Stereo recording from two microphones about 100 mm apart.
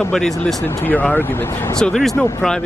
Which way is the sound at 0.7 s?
20° left (ahead or behind).